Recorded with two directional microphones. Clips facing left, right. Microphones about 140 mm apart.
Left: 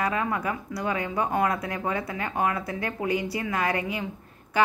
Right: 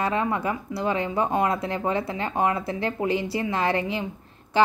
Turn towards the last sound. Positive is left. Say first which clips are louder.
# right 3 dB
turn(degrees=-30)  # may be behind; listen again after turning